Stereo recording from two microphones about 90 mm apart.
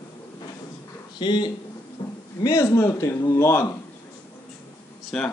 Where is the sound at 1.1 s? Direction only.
55° left (ahead or behind).